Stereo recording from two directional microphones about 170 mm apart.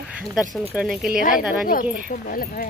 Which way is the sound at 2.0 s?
60° left (ahead or behind).